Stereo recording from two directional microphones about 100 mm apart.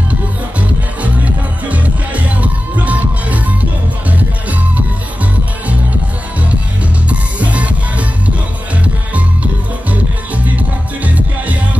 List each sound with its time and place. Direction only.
0.1 s music: 15° right (ahead or behind)
7.1 s music: 15° right (ahead or behind)
8.8 s music: 15° right (ahead or behind)